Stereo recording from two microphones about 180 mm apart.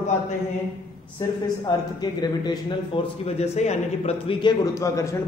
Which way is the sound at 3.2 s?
35° left (ahead or behind).